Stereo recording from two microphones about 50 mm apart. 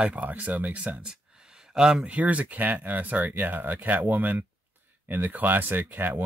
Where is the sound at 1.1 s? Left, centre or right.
Centre.